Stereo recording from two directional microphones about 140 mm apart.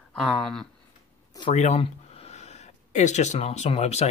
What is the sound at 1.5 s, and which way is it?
Speech, 55° left (ahead or behind).